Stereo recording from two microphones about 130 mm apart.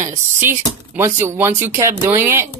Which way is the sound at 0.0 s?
20° right (ahead or behind).